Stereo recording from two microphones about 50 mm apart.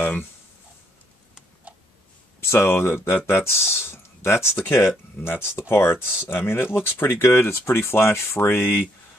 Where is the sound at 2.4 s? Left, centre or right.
Left.